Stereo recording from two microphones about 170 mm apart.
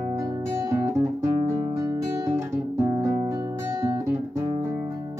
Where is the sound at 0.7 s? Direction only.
15° right (ahead or behind).